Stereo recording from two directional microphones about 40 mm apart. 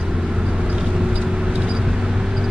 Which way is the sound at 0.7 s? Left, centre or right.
Right.